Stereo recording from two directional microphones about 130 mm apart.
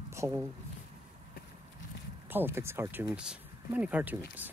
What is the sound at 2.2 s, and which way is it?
Speech, 15° right (ahead or behind).